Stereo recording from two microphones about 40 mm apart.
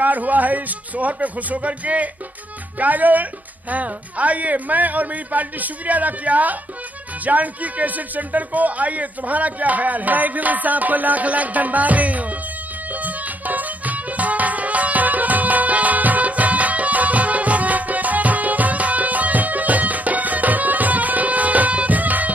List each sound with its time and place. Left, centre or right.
0.0 s a man's voice: right
13.0 s music: right